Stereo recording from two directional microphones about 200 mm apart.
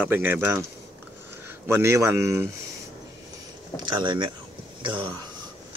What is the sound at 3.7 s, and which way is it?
Speech, 20° right (ahead or behind).